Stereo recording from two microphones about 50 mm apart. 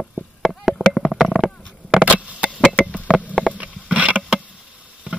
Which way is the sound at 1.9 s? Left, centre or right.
Right.